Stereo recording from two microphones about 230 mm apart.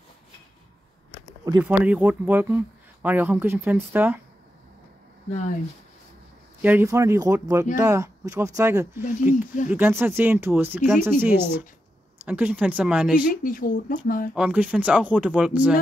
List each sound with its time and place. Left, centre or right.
1.4 s speech: centre
6.6 s speech: centre
13.3 s speech: left
14.3 s speech: centre